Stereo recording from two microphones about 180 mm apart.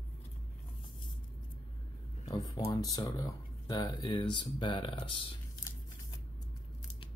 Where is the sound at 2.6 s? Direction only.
20° left (ahead or behind).